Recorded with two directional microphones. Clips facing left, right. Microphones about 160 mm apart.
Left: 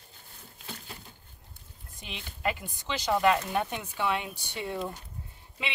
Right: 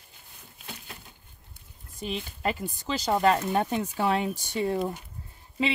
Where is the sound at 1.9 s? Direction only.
40° right (ahead or behind).